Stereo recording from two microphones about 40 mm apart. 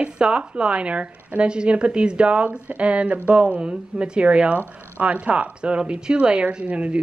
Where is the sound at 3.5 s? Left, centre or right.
Right.